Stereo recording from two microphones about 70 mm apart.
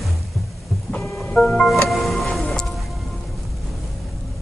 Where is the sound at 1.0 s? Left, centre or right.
Centre.